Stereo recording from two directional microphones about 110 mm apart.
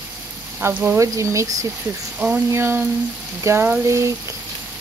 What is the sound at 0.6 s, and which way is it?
Speech, 15° right (ahead or behind).